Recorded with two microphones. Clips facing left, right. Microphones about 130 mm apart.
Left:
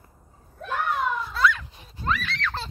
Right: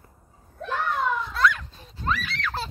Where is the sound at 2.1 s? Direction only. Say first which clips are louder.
Even; 5° right (ahead or behind).